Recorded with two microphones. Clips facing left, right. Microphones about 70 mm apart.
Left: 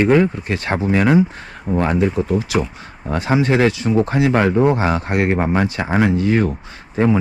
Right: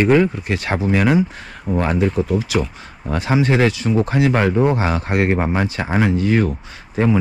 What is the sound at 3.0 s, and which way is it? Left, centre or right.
Speech, left.